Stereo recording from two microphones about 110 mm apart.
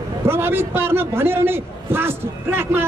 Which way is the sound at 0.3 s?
20° right (ahead or behind).